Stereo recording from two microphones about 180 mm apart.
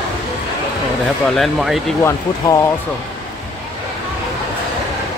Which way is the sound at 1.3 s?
Centre (ahead or behind).